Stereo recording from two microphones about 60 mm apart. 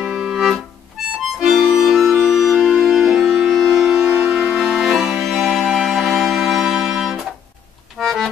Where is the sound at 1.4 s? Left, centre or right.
Centre.